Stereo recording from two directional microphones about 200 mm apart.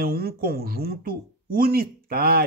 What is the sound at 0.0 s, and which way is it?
Speech, 50° right (ahead or behind).